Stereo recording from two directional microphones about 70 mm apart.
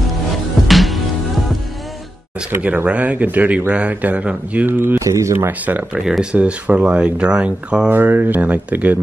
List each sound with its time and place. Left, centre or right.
0.7 s music: centre
2.6 s a man's voice: centre
4.6 s speech: right
5.0 s speech: right
5.5 s a man's voice: right
5.9 s speech: centre
6.3 s speech: right
7.9 s a man's voice: right